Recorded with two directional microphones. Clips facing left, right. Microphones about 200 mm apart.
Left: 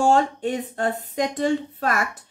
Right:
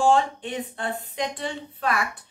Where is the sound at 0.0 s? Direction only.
40° left (ahead or behind).